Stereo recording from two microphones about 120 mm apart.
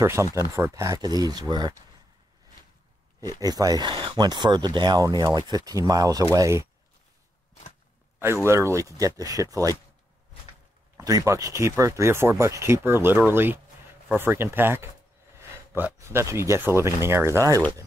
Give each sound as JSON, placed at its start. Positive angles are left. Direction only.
{"t": 0.0, "sound": "speech", "side_deg": -25}
{"t": 3.2, "sound": "speech", "side_deg": -30}
{"t": 8.5, "sound": "speech", "side_deg": -25}
{"t": 11.0, "sound": "speech", "side_deg": -30}